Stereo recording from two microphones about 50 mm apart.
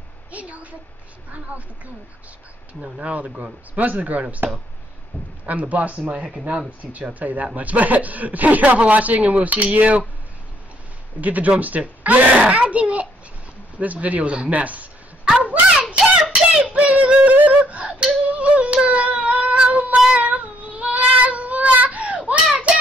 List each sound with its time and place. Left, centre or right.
0.3 s a woman's voice: right
2.8 s speech: centre
3.7 s speech: right
5.1 s a sound: left
5.5 s a child's voice: right
11.1 s a child's voice: right
15.4 s a sound: right
18.9 s cat: right
20.1 s child singing: right